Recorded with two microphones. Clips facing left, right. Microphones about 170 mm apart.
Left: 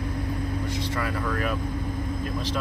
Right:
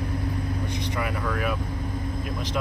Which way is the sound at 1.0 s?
10° right (ahead or behind).